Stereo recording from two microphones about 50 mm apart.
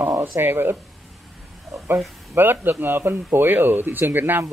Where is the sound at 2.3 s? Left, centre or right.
Right.